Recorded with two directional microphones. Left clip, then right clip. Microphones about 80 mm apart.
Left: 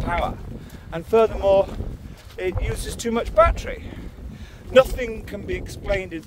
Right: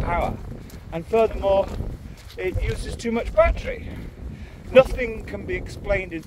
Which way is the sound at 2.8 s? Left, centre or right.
Left.